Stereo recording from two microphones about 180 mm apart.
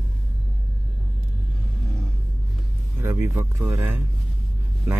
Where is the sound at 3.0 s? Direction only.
15° right (ahead or behind).